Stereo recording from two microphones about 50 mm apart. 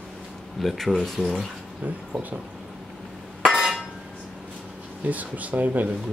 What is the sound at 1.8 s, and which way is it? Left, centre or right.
Speech, right.